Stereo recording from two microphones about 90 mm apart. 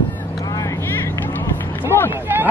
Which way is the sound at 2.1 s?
25° right (ahead or behind).